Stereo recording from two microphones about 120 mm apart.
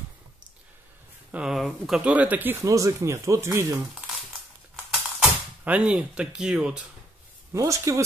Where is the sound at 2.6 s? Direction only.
25° right (ahead or behind).